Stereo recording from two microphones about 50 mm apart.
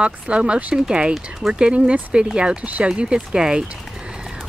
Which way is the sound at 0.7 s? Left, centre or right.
Centre.